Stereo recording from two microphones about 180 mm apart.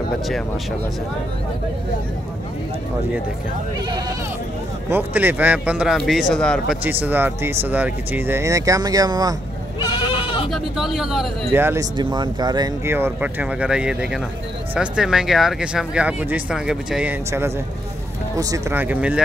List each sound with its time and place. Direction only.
4.8 s speech: 10° right (ahead or behind)
6.8 s speech: 10° right (ahead or behind)
9.8 s goat: 25° left (ahead or behind)
10.5 s speech: centre (ahead or behind)
11.5 s speech: 15° right (ahead or behind)